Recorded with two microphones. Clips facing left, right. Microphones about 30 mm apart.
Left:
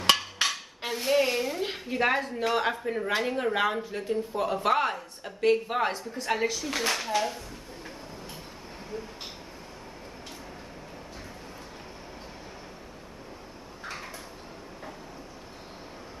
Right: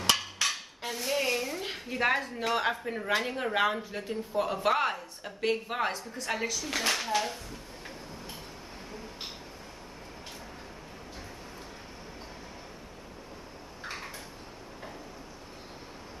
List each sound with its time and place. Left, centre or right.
0.5 s speech: centre
6.1 s a woman's voice: centre
6.6 s speech: centre
7.2 s a sound: centre